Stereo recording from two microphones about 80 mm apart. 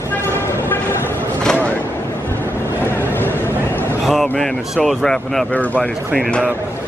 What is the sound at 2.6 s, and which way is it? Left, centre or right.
Vehicle, left.